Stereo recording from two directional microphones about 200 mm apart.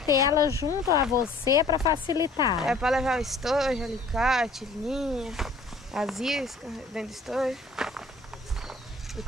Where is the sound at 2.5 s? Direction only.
Centre (ahead or behind).